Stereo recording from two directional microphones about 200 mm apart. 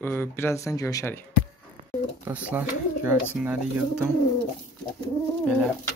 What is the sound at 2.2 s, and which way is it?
Speech, 5° right (ahead or behind).